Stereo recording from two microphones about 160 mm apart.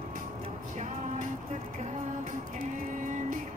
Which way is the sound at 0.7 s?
50° right (ahead or behind).